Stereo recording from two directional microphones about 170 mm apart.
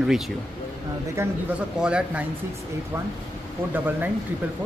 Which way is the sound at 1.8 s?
5° right (ahead or behind).